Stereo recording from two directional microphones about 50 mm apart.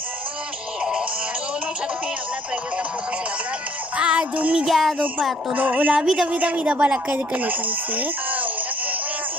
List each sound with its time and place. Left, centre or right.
3.9 s music: right
4.6 s music: centre
5.5 s a woman's voice: right
5.9 s speech: centre
6.2 s speech: right